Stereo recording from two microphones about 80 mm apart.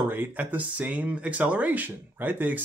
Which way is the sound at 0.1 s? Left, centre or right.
Right.